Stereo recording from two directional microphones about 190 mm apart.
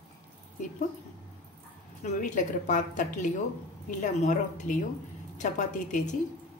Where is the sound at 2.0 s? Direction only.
40° left (ahead or behind).